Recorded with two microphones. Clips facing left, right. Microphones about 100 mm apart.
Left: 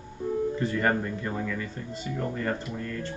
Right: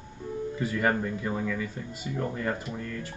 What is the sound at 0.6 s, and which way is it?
Speech, 5° right (ahead or behind).